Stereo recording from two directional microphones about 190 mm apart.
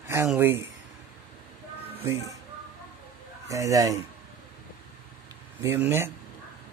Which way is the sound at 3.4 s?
15° right (ahead or behind).